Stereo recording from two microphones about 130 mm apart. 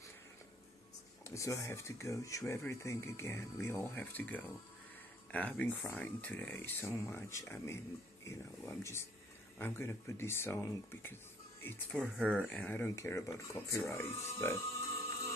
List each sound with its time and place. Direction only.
1.2 s speech: 25° left (ahead or behind)
12.0 s speech: 10° right (ahead or behind)
12.4 s speech: 10° left (ahead or behind)